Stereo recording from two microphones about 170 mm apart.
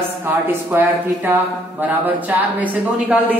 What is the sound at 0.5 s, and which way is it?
A woman's voice, 10° right (ahead or behind).